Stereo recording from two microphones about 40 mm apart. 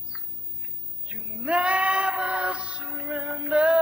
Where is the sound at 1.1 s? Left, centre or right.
Right.